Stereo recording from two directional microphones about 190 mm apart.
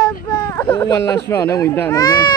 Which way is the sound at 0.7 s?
20° left (ahead or behind).